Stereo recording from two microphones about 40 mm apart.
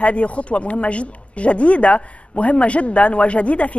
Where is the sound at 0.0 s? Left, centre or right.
Left.